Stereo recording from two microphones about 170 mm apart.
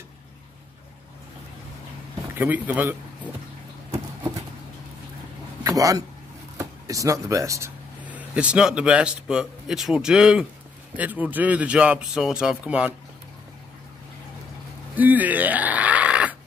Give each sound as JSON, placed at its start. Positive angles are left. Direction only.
{"t": 2.3, "sound": "speech", "side_deg": -10}
{"t": 5.6, "sound": "a sound", "side_deg": -20}
{"t": 6.6, "sound": "speech", "side_deg": -20}
{"t": 15.0, "sound": "speech", "side_deg": -10}